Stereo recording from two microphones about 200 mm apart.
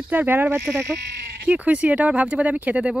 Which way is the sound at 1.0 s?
60° right (ahead or behind).